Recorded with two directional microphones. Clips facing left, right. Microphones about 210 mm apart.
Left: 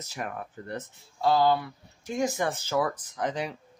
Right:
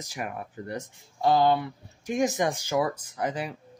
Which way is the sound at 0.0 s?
10° right (ahead or behind).